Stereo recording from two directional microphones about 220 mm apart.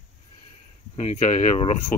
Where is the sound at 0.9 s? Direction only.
30° left (ahead or behind).